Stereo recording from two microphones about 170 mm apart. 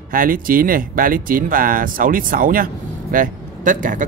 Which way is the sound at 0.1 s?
55° right (ahead or behind).